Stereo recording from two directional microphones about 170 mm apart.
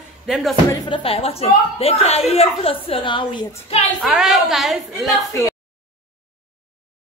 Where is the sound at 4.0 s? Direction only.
Centre (ahead or behind).